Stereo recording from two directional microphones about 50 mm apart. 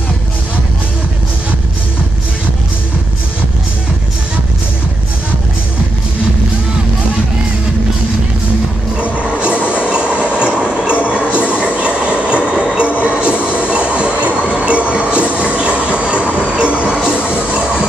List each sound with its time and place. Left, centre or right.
8.9 s music: right
9.7 s train: right
11.1 s music: right
11.5 s train: right
16.8 s a sound: centre
17.1 s a sound: left